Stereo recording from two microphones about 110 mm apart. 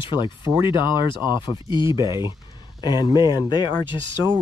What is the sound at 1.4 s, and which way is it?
Speech, 40° left (ahead or behind).